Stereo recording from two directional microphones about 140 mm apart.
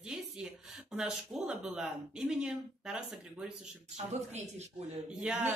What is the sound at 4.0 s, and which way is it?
Speech, 55° right (ahead or behind).